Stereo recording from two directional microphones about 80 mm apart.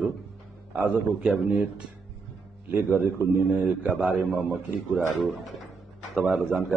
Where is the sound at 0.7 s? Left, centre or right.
Right.